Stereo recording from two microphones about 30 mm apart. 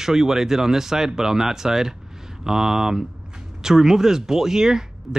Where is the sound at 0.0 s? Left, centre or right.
Centre.